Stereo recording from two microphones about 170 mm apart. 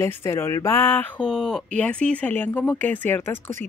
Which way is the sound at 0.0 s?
15° left (ahead or behind).